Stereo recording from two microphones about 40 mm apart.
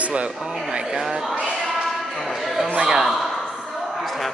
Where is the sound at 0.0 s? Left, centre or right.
Right.